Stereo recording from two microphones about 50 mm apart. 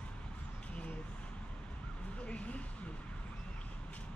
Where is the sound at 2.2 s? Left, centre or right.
Left.